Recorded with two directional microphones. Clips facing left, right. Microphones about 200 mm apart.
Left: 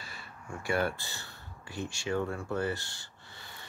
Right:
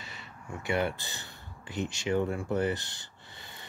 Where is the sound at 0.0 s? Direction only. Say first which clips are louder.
Right 1 dB; 20° right (ahead or behind).